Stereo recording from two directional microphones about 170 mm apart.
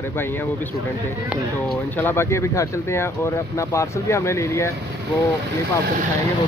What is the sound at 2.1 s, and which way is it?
Speech, 15° left (ahead or behind).